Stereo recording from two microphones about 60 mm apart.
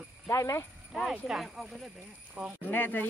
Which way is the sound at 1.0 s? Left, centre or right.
Centre.